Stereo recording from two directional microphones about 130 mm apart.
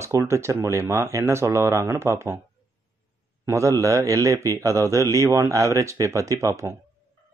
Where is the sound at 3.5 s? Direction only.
25° right (ahead or behind).